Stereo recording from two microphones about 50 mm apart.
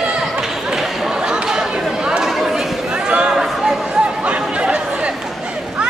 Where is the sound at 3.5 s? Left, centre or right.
Centre; by 4.4 s right.